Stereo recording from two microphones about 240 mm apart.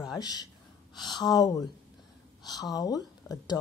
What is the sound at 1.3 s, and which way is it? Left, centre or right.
Speech, centre.